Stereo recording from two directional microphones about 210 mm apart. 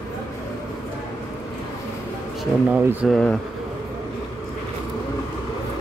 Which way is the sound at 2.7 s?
10° right (ahead or behind).